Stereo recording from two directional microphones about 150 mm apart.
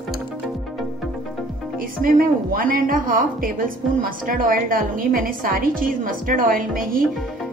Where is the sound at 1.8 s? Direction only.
70° right (ahead or behind).